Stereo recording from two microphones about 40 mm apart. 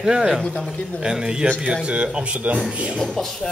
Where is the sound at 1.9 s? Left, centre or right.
Right.